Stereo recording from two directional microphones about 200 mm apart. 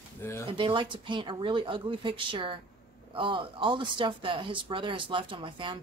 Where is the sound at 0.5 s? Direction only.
25° right (ahead or behind).